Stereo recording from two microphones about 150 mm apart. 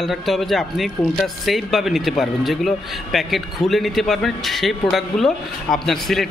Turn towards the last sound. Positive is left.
turn(degrees=0)  # may be behind; listen again after turning